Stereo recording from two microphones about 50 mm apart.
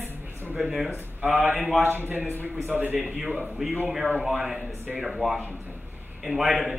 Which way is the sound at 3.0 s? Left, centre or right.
Centre.